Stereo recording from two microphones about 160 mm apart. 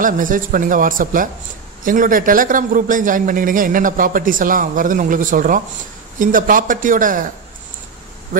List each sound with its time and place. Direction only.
0.0 s a man's voice: 55° right (ahead or behind)